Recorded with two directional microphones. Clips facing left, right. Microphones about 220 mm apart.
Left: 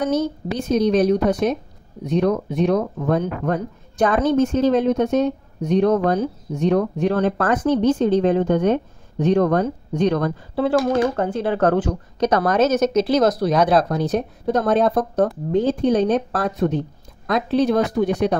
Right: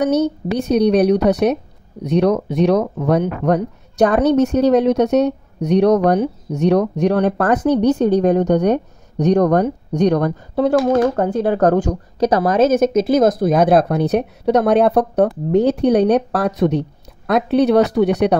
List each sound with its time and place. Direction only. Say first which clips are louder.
0.0 s a woman's voice: right 4 dB; 70° right (ahead or behind)
7.4 s a woman's voice: right 3 dB; 40° right (ahead or behind)
12.7 s a woman's voice: right 3 dB; 50° right (ahead or behind); by 16.8 s 75° right (ahead or behind)
17.3 s a woman's voice: right 4 dB; 65° right (ahead or behind)